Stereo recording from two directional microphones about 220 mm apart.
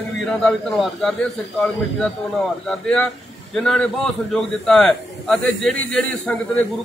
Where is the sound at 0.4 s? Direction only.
5° left (ahead or behind).